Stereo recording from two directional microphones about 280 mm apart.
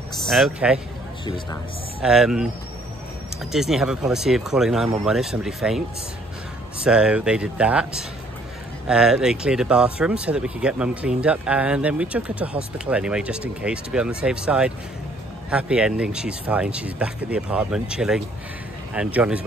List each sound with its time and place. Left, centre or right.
0.3 s speech: centre
1.2 s speech: centre
2.0 s speech: centre
3.5 s speech: centre
6.8 s speech: centre